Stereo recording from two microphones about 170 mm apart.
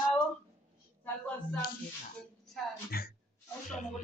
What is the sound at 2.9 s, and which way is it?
Speech, 60° left (ahead or behind).